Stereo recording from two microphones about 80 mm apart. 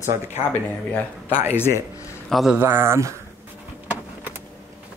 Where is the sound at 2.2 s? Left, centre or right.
Centre.